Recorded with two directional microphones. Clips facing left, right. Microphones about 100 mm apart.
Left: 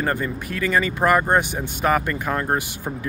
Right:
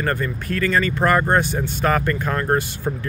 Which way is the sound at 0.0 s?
15° left (ahead or behind).